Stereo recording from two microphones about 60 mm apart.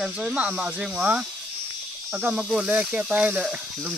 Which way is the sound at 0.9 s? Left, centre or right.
Right.